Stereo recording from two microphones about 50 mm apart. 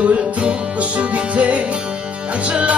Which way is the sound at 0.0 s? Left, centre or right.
Right.